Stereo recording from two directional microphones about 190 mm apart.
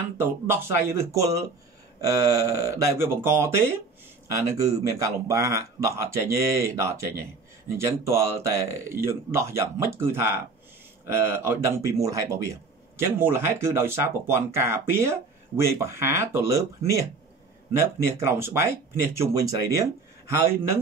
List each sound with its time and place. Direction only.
0.2 s speech: 10° right (ahead or behind)